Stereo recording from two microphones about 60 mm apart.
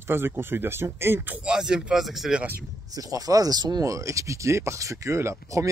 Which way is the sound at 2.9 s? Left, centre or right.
Right.